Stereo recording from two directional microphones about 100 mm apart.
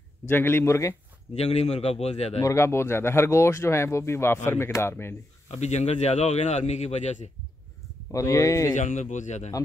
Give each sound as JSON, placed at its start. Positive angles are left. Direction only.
{"t": 0.3, "sound": "speech", "side_deg": 20}
{"t": 1.3, "sound": "speech", "side_deg": 90}
{"t": 2.4, "sound": "speech", "side_deg": 30}
{"t": 5.5, "sound": "speech", "side_deg": 90}
{"t": 8.1, "sound": "speech", "side_deg": 35}